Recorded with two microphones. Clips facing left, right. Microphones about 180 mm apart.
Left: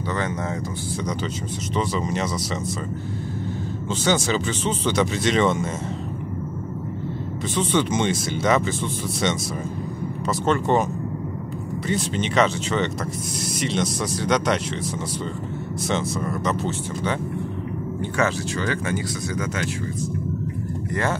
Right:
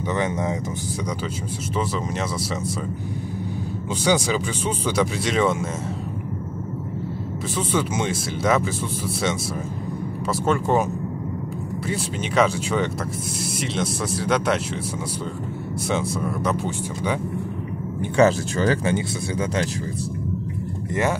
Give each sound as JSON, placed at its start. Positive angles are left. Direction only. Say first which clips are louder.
{"t": 1.8, "sound": "speech", "louder": "left 2 dB", "side_deg": 0}
{"t": 4.0, "sound": "speech", "louder": "right 1 dB", "side_deg": -10}
{"t": 7.5, "sound": "speech", "louder": "left 2 dB", "side_deg": -5}
{"t": 10.4, "sound": "speech", "louder": "even", "side_deg": -5}
{"t": 11.9, "sound": "speech", "louder": "left 2 dB", "side_deg": -5}
{"t": 15.9, "sound": "speech", "louder": "even", "side_deg": -10}
{"t": 18.1, "sound": "speech", "louder": "right 7 dB", "side_deg": -35}
{"t": 20.9, "sound": "speech", "louder": "right 2 dB", "side_deg": -15}